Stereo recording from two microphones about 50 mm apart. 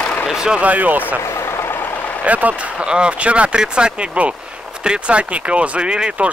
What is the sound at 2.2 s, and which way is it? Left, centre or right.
Speech, right.